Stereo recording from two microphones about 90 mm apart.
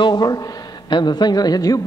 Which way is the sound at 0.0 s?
50° left (ahead or behind).